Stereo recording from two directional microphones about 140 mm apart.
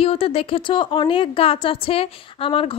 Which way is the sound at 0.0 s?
45° left (ahead or behind).